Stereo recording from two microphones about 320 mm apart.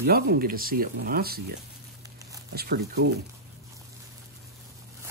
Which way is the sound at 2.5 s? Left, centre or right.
Right.